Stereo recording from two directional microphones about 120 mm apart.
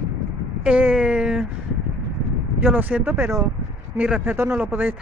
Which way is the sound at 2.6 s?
15° right (ahead or behind).